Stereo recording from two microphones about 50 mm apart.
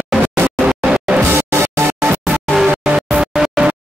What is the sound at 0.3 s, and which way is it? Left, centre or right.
Music, centre.